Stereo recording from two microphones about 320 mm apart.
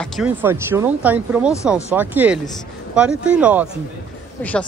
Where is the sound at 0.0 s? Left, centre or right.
Centre.